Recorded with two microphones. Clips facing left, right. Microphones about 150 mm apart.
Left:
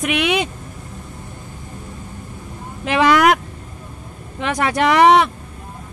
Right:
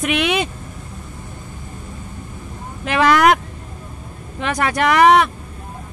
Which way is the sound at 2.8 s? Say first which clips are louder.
Left 1 dB; 20° left (ahead or behind).